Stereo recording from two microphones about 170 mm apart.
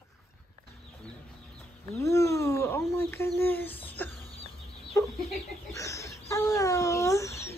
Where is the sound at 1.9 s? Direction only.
20° left (ahead or behind).